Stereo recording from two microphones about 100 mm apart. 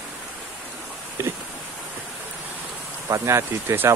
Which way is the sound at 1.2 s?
30° right (ahead or behind).